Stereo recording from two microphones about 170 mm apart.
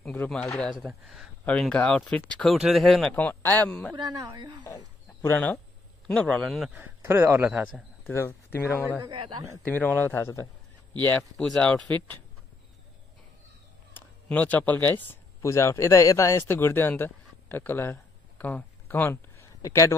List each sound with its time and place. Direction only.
0.0 s speech: 5° left (ahead or behind)
3.9 s speech: 20° right (ahead or behind)
4.6 s speech: 15° left (ahead or behind); by 7.8 s 5° right (ahead or behind)
8.1 s a man's voice: 15° left (ahead or behind)
13.9 s a sound: 10° left (ahead or behind)
15.0 s a man's voice: 15° left (ahead or behind)